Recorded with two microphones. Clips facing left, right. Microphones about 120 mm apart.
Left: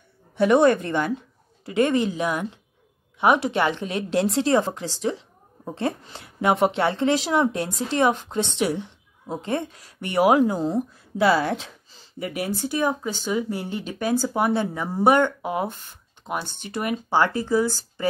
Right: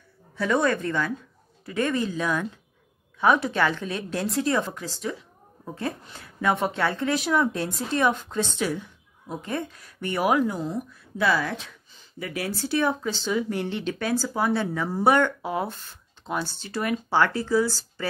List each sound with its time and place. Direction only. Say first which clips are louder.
0.4 s speech: left 6 dB; 25° left (ahead or behind)
3.4 s a woman's voice: left 2 dB; 20° left (ahead or behind)
12.3 s speech: left 1 dB; 20° left (ahead or behind)